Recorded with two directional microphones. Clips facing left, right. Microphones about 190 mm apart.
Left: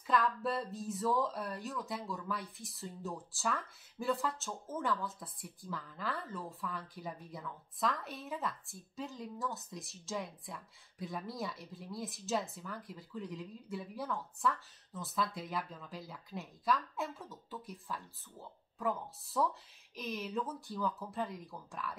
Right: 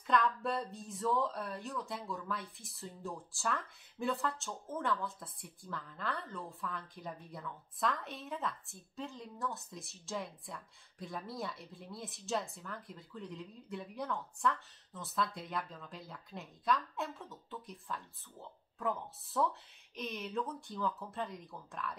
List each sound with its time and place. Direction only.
0.0 s speech: 5° left (ahead or behind)